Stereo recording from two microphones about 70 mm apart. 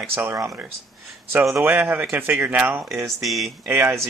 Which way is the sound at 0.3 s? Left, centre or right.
Right.